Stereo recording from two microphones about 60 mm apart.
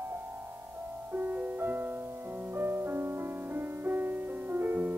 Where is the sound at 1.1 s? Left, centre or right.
Right.